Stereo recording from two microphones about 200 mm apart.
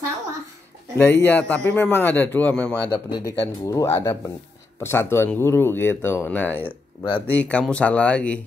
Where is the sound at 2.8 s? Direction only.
20° left (ahead or behind).